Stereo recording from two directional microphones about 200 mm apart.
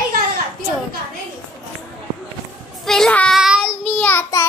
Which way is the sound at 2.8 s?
Centre (ahead or behind).